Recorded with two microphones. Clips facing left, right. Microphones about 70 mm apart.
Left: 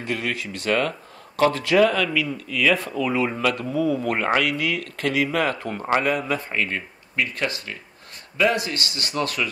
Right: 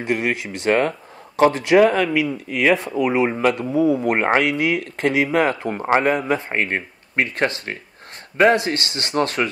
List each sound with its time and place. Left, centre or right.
0.0 s speech: right